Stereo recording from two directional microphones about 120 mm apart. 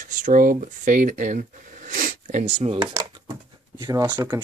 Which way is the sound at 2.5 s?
50° right (ahead or behind).